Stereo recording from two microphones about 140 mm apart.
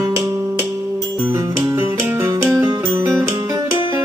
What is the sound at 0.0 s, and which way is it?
Music, 20° right (ahead or behind).